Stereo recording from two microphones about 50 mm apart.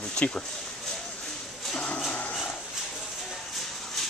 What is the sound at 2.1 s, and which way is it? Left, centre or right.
Dog, left.